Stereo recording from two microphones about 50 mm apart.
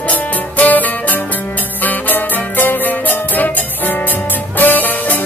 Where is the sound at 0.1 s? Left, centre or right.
Left.